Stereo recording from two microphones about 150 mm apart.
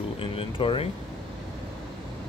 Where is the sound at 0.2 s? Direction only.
35° left (ahead or behind).